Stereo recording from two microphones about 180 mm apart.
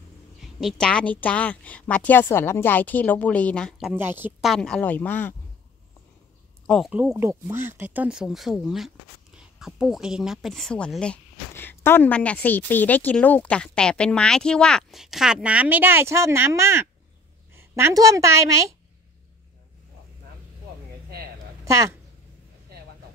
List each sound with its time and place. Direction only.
0.4 s a woman's voice: centre (ahead or behind)
3.9 s a woman's voice: 10° right (ahead or behind)
4.5 s a woman's voice: 5° left (ahead or behind)
6.7 s a woman's voice: 5° right (ahead or behind)
21.6 s a woman's voice: 15° right (ahead or behind)